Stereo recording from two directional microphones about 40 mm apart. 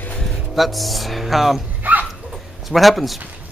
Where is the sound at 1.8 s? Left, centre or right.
Right.